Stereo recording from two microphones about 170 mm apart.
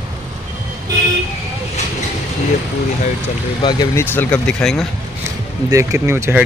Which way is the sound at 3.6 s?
25° left (ahead or behind).